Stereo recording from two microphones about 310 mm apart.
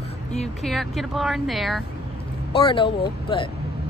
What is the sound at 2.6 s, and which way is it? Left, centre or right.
Speech, centre.